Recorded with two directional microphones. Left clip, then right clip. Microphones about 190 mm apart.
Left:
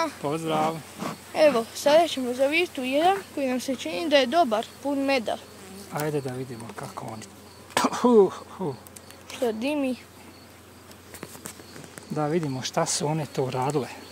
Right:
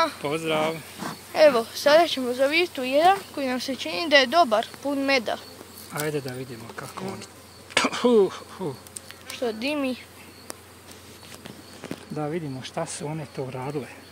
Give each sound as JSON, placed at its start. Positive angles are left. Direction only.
{"t": 0.2, "sound": "speech", "side_deg": 45}
{"t": 1.3, "sound": "speech", "side_deg": 10}
{"t": 5.9, "sound": "speech", "side_deg": 45}
{"t": 7.7, "sound": "insect", "side_deg": 45}
{"t": 9.4, "sound": "speech", "side_deg": 10}
{"t": 12.2, "sound": "speech", "side_deg": 40}